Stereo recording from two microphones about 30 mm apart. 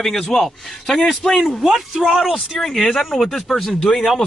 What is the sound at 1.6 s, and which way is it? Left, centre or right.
Speech, centre.